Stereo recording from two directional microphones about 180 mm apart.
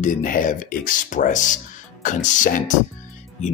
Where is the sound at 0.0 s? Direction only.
45° left (ahead or behind).